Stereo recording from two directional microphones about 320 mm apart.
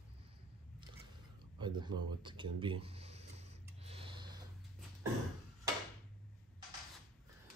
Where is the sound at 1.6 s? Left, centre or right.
Centre.